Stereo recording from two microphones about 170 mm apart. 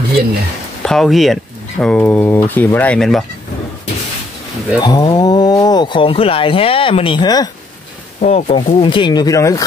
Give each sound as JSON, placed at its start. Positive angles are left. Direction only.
{"t": 0.8, "sound": "speech", "side_deg": 0}
{"t": 4.7, "sound": "speech", "side_deg": 25}
{"t": 8.2, "sound": "speech", "side_deg": 40}